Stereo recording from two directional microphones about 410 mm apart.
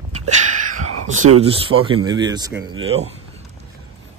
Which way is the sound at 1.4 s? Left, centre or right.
Centre.